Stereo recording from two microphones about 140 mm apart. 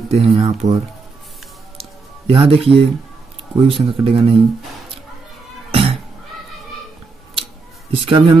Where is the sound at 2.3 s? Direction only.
40° right (ahead or behind).